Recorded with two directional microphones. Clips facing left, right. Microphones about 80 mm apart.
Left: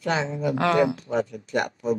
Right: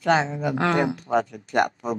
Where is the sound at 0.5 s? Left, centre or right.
Right.